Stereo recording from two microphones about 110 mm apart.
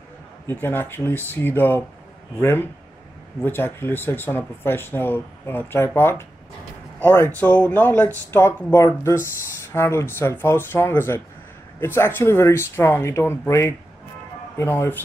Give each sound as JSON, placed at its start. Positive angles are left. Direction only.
{"t": 0.5, "sound": "speech", "side_deg": 20}